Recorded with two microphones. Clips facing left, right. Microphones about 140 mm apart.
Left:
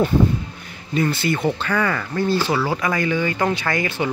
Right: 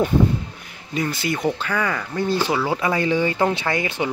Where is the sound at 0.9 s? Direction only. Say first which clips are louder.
Left 3 dB; 10° right (ahead or behind).